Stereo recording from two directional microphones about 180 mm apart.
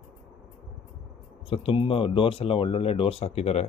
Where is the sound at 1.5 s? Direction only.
30° left (ahead or behind).